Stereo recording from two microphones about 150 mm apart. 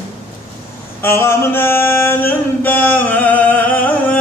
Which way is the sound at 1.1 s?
15° left (ahead or behind).